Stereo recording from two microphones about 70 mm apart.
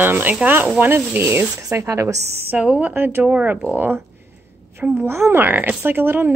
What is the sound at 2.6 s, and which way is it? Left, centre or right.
Speech, centre.